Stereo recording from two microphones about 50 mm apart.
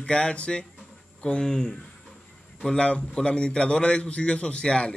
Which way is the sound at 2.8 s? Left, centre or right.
Left.